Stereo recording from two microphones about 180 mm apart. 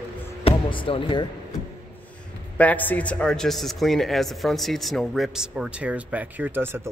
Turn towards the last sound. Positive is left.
turn(degrees=-10)  # may be behind; listen again after turning